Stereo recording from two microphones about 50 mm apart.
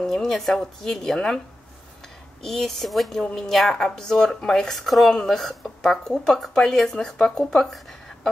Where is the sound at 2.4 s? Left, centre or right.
Centre.